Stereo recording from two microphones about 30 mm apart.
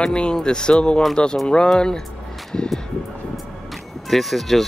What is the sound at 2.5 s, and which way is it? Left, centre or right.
Speech, left.